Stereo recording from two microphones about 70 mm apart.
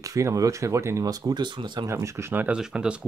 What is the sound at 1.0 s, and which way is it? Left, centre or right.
Speech, right.